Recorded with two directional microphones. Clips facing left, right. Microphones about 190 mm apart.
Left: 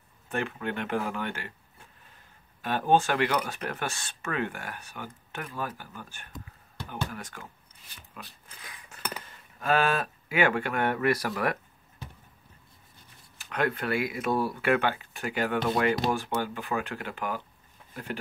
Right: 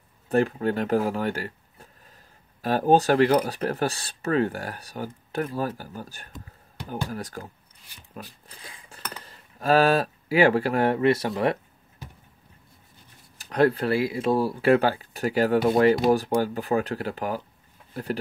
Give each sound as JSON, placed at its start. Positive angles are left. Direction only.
{"t": 0.3, "sound": "speech", "side_deg": -35}
{"t": 8.1, "sound": "a sound", "side_deg": -35}
{"t": 9.2, "sound": "speech", "side_deg": -35}
{"t": 13.4, "sound": "speech", "side_deg": -35}